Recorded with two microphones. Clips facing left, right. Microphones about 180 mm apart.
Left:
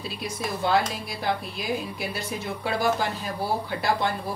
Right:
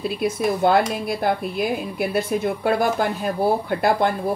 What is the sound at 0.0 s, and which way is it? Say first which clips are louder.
Speech: right 10 dB; 55° right (ahead or behind).